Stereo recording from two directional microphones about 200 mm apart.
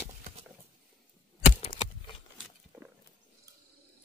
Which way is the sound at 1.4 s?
30° left (ahead or behind).